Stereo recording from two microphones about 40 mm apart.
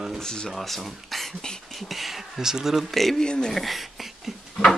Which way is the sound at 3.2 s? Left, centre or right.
Centre.